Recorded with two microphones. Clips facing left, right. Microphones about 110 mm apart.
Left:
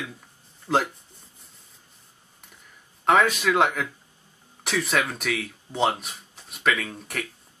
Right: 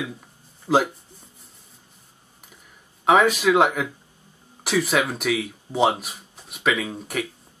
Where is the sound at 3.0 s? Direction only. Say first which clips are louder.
Right 3 dB; 5° right (ahead or behind).